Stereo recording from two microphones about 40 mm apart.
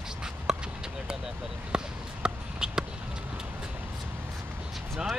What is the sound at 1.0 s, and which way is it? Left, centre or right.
Vehicle, centre.